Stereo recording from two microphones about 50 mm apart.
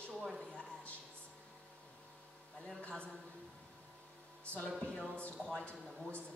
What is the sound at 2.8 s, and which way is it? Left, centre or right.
Speech, left.